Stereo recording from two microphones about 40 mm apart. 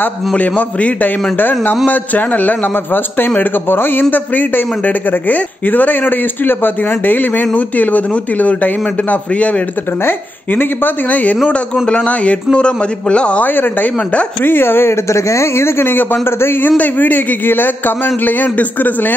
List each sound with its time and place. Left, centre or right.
0.4 s a man's voice: left
1.4 s speech: left
4.0 s speech: left
7.5 s a man's voice: left
10.0 s speech: left
11.4 s a man's voice: left
13.4 s speech: left
14.4 s a man's voice: left
16.6 s speech: left